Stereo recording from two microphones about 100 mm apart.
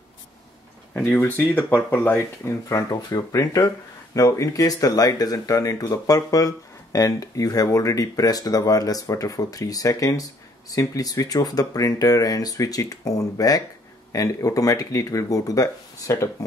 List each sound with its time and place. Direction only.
1.0 s speech: 20° left (ahead or behind)